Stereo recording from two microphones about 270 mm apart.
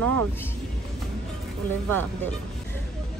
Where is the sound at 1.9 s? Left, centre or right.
Centre.